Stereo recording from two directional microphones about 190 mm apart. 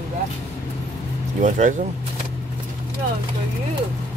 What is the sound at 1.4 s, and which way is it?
Speech, 40° right (ahead or behind).